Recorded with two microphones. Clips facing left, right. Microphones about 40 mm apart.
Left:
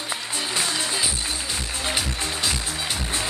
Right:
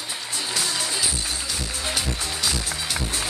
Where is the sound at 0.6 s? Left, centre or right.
Left.